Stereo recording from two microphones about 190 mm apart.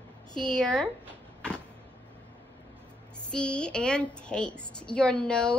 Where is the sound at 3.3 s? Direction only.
5° left (ahead or behind).